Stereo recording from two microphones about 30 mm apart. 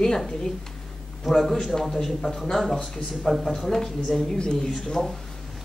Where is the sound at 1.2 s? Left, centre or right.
Centre.